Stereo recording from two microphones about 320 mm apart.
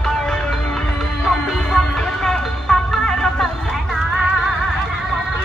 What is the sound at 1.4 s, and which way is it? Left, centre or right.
Music, centre.